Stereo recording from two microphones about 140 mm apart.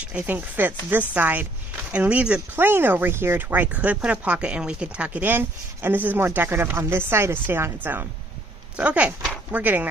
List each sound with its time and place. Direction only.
0.0 s speech: 10° right (ahead or behind)